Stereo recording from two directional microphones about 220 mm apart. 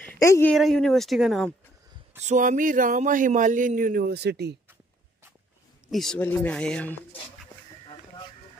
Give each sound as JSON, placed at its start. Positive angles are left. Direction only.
{"t": 0.0, "sound": "speech", "side_deg": 10}
{"t": 2.2, "sound": "speech", "side_deg": -35}
{"t": 5.9, "sound": "speech", "side_deg": 0}